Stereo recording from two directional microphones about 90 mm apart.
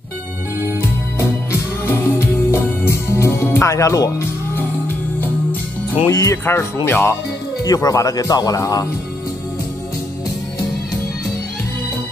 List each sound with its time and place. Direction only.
1.9 s music: 30° left (ahead or behind)
6.0 s speech: 35° left (ahead or behind)
7.6 s speech: 40° left (ahead or behind)